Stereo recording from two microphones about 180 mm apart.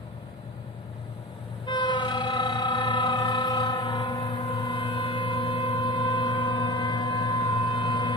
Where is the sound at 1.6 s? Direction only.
25° left (ahead or behind).